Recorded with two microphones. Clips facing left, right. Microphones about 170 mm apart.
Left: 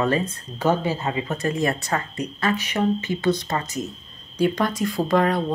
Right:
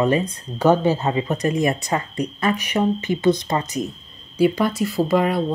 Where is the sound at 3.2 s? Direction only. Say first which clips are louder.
Right 5 dB; 20° right (ahead or behind).